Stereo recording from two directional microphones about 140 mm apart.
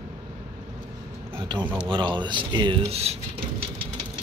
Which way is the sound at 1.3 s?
35° right (ahead or behind).